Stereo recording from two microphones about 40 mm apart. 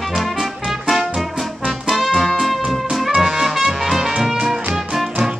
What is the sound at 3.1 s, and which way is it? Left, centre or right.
Music, centre.